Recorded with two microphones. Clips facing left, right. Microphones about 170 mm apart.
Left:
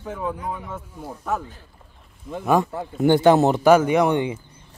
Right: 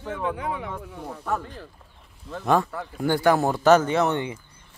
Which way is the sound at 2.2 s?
15° left (ahead or behind).